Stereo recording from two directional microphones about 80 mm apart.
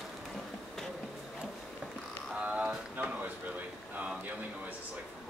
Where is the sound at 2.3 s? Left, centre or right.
Centre.